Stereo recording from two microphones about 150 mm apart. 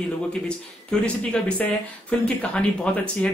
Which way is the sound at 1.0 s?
10° left (ahead or behind).